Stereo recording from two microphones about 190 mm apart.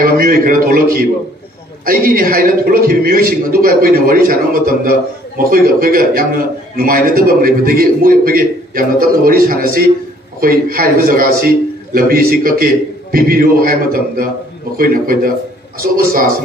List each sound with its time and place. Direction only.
0.2 s a man's voice: 50° right (ahead or behind)